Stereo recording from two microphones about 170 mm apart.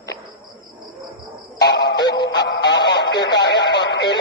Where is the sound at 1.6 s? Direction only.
80° left.